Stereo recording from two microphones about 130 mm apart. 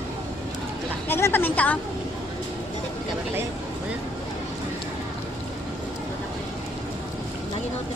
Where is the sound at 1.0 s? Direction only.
15° left (ahead or behind).